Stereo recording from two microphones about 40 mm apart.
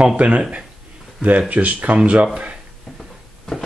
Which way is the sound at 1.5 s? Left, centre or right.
Right.